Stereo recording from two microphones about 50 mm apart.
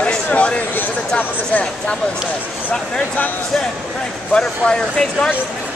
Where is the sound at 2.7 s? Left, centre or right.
Left.